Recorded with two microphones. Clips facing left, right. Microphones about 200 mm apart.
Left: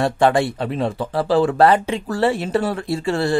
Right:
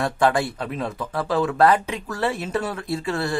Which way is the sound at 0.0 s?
25° left (ahead or behind).